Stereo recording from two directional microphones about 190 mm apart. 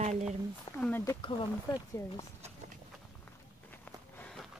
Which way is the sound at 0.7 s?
10° left (ahead or behind).